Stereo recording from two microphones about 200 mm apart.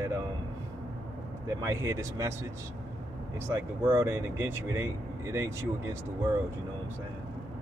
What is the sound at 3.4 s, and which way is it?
Speech, 10° right (ahead or behind).